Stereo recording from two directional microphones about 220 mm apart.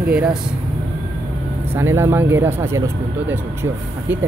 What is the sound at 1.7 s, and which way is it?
Speech, 10° right (ahead or behind).